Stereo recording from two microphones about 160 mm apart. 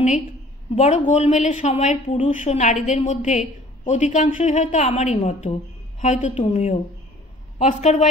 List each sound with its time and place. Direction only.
0.7 s speech: 45° left (ahead or behind)